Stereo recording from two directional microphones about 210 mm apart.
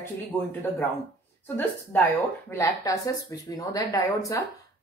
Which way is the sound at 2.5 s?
15° left (ahead or behind).